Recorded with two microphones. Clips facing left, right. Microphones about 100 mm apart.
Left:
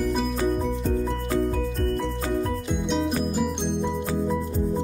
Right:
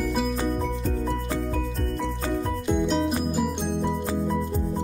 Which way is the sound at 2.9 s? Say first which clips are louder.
Even; 5° right (ahead or behind).